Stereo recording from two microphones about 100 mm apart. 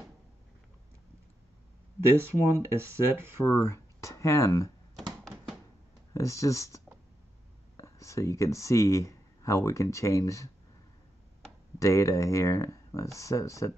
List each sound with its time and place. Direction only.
2.1 s speech: 25° right (ahead or behind)
3.6 s speech: 30° left (ahead or behind)
6.1 s speech: 30° left (ahead or behind)
11.8 s speech: 30° left (ahead or behind)